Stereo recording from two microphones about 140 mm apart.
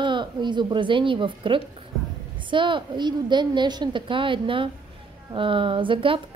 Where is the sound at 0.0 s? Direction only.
35° right (ahead or behind).